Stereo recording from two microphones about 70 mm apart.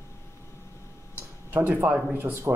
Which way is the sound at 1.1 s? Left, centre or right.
Right.